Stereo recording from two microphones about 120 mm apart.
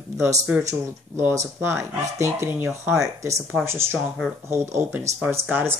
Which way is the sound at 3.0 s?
25° right (ahead or behind).